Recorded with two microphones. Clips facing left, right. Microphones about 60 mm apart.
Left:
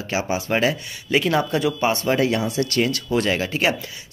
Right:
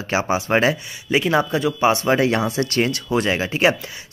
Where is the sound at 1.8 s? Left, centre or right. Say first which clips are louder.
Right 6 dB; right.